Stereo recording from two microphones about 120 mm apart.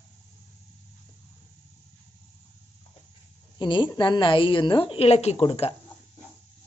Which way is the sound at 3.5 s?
40° left (ahead or behind).